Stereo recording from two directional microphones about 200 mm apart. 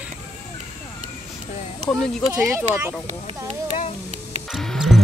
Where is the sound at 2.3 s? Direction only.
10° right (ahead or behind).